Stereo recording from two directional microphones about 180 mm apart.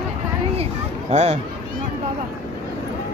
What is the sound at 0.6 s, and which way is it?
Speech, 40° right (ahead or behind).